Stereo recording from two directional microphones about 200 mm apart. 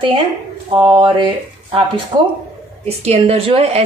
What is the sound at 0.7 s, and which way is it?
A woman's voice, 20° right (ahead or behind).